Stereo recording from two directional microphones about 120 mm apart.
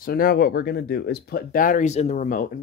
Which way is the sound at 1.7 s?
70° left (ahead or behind).